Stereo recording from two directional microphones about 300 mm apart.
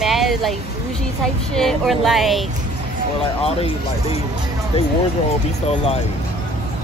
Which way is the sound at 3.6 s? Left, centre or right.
Centre.